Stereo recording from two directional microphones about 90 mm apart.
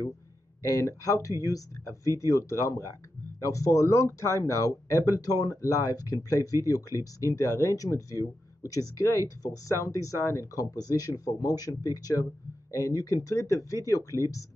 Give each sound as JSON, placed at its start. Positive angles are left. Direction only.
{"t": 0.6, "sound": "speech", "side_deg": 35}